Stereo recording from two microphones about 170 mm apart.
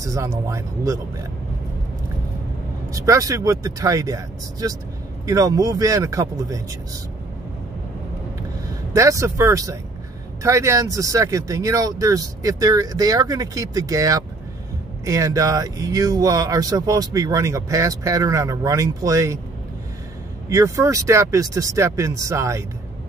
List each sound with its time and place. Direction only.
0.0 s speech: 20° right (ahead or behind)
2.9 s speech: 20° right (ahead or behind)
8.9 s speech: 20° right (ahead or behind)
20.4 s speech: 20° right (ahead or behind)